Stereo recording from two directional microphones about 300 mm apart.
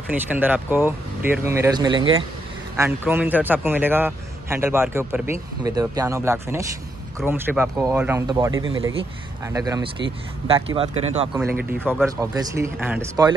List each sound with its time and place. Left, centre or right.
0.1 s a man's voice: centre
11.3 s a man's voice: centre